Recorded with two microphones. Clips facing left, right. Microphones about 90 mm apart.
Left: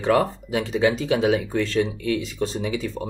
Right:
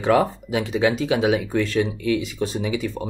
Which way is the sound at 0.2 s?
10° right (ahead or behind).